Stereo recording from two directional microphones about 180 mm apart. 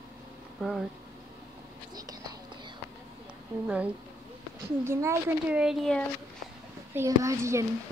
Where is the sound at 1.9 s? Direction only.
20° right (ahead or behind).